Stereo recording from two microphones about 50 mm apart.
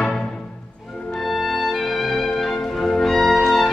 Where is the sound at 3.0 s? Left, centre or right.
Centre.